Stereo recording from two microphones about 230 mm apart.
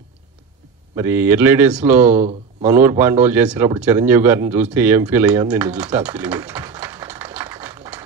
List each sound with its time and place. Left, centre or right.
0.9 s speech: centre
2.0 s a man's voice: right
2.7 s speech: centre